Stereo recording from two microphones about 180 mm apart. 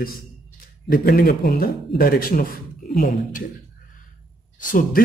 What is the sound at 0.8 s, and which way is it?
Speech, 55° left (ahead or behind).